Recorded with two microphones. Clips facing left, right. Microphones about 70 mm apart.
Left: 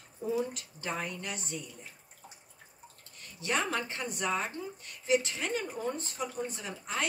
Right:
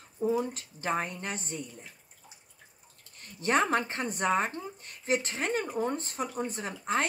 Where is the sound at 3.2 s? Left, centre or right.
Right.